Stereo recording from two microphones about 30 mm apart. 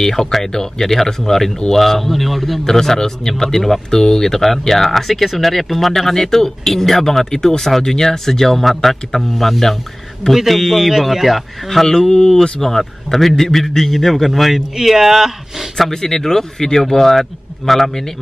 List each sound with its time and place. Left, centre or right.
0.0 s a man's voice: centre
2.6 s a man's voice: centre
7.2 s a man's voice: centre
10.9 s speech: centre
12.1 s a man's voice: centre
14.8 s speech: centre
15.9 s a man's voice: centre